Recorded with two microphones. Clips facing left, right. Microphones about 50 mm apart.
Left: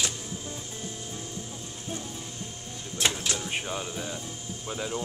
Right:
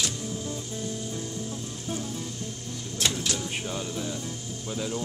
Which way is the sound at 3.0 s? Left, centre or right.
Centre.